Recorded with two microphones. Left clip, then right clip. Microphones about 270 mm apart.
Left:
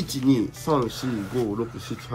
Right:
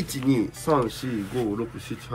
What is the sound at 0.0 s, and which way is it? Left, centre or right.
Speech, centre.